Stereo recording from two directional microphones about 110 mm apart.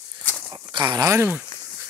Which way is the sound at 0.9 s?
25° right (ahead or behind).